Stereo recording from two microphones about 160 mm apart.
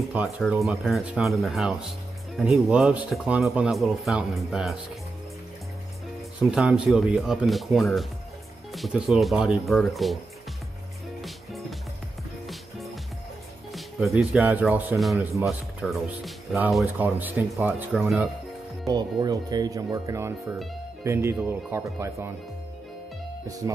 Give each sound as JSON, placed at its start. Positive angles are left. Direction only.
{"t": 0.4, "sound": "speech", "side_deg": 0}
{"t": 6.5, "sound": "speech", "side_deg": -5}
{"t": 11.1, "sound": "music", "side_deg": 0}
{"t": 13.7, "sound": "speech", "side_deg": 0}
{"t": 15.3, "sound": "speech", "side_deg": 0}
{"t": 16.8, "sound": "speech", "side_deg": -10}
{"t": 18.9, "sound": "speech", "side_deg": -25}